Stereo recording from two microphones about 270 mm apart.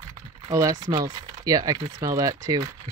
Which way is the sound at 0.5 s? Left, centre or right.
Centre.